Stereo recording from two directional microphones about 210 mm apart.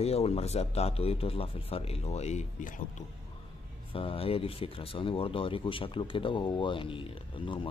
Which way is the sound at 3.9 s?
25° left (ahead or behind).